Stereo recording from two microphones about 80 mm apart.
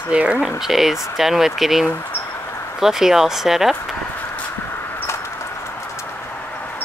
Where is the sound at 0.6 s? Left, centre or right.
Centre.